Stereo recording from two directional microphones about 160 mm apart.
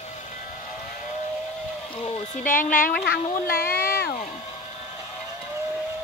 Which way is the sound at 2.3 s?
55° left (ahead or behind).